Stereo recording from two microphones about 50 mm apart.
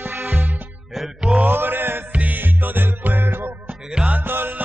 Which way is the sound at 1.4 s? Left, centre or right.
Right.